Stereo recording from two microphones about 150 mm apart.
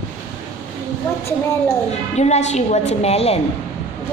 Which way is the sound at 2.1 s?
45° left (ahead or behind).